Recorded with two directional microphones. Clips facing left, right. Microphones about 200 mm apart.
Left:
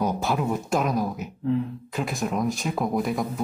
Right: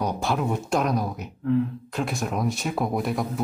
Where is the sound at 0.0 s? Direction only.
5° left (ahead or behind).